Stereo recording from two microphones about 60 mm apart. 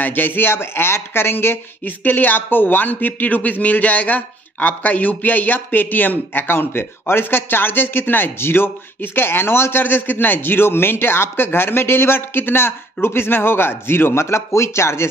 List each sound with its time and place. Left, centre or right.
0.0 s speech: left